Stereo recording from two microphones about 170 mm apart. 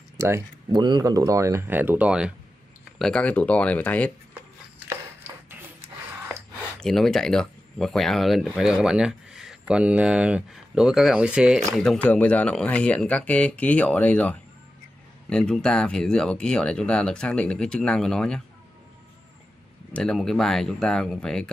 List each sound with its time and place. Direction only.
0.2 s speech: 15° right (ahead or behind)
0.7 s speech: 25° right (ahead or behind); by 2.3 s 5° right (ahead or behind)
3.0 s speech: 5° left (ahead or behind)
4.3 s a sound: 10° right (ahead or behind)
6.8 s speech: centre (ahead or behind)
19.9 s speech: 5° left (ahead or behind)